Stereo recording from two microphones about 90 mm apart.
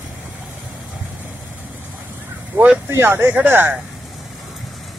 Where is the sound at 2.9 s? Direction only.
25° right (ahead or behind).